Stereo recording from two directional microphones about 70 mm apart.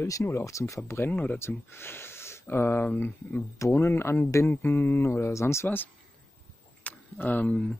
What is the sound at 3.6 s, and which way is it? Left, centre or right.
Speech, left.